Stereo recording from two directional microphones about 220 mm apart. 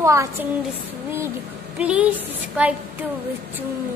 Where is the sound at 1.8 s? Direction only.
5° right (ahead or behind).